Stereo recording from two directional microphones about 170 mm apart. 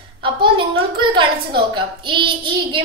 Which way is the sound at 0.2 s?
30° right (ahead or behind).